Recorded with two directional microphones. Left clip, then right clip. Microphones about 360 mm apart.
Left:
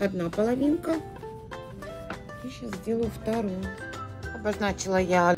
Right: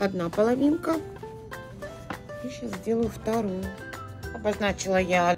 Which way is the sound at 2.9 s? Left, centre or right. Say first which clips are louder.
Right 2 dB; centre.